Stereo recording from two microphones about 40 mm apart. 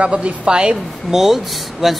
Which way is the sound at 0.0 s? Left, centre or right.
Right.